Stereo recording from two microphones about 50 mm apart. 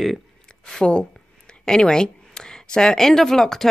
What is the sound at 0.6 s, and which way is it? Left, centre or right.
A woman's voice, centre.